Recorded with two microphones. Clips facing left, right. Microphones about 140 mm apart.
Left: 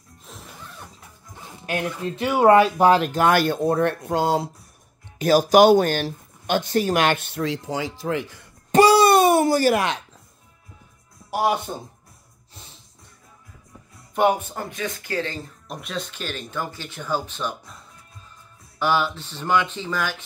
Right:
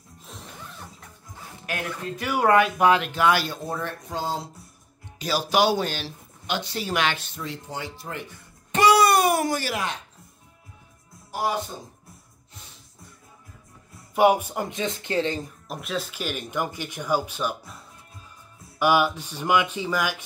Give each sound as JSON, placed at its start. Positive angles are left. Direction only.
{"t": 0.2, "sound": "music", "side_deg": 0}
{"t": 1.7, "sound": "speech", "side_deg": 25}
{"t": 5.2, "sound": "speech", "side_deg": 45}
{"t": 8.7, "sound": "a sound", "side_deg": 30}
{"t": 14.1, "sound": "speech", "side_deg": -10}
{"t": 15.7, "sound": "speech", "side_deg": 0}
{"t": 18.8, "sound": "speech", "side_deg": -10}